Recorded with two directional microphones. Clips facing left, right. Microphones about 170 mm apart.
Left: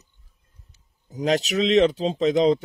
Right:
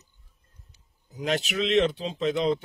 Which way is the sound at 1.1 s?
40° left (ahead or behind).